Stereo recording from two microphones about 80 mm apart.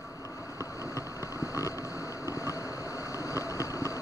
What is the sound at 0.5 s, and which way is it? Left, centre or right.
Vehicle, left.